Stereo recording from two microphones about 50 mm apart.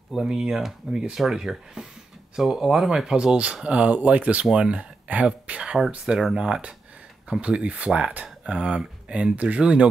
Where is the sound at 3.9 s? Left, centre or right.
Right.